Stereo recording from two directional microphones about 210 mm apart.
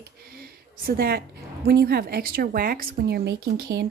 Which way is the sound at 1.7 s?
50° right (ahead or behind).